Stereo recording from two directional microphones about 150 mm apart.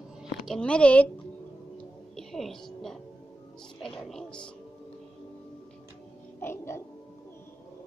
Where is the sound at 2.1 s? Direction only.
Centre (ahead or behind).